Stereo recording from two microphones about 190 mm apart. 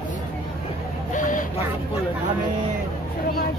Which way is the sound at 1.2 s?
45° left (ahead or behind).